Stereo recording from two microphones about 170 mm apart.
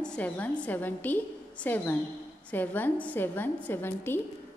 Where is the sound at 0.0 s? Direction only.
5° left (ahead or behind).